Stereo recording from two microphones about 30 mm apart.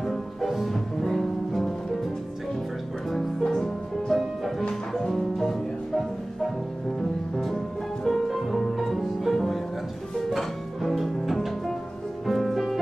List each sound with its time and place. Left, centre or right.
0.0 s music: centre
3.4 s music: left
4.1 s music: centre
8.0 s music: centre
8.5 s music: centre